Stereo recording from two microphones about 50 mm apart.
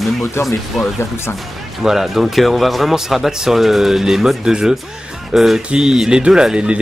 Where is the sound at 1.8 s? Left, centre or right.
Centre.